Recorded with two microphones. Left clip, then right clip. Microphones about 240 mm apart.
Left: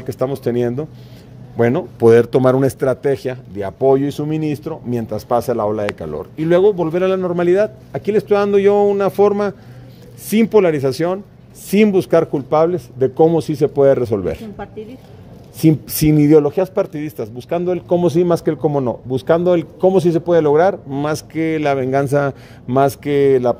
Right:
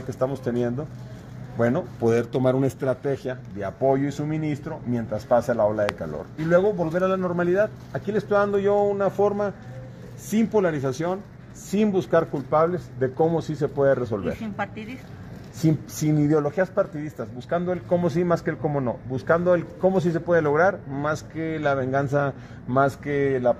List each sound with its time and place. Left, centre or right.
0.1 s a man's voice: left
15.6 s a man's voice: left